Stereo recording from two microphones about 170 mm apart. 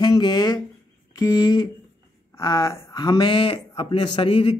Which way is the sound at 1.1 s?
20° left (ahead or behind).